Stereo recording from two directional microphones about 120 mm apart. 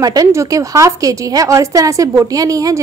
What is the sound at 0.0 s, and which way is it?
A woman's voice, 30° right (ahead or behind).